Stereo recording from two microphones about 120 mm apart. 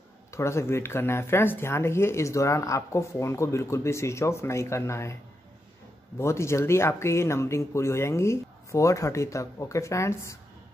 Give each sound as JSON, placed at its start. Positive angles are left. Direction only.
{"t": 0.3, "sound": "speech", "side_deg": 25}
{"t": 6.1, "sound": "speech", "side_deg": 25}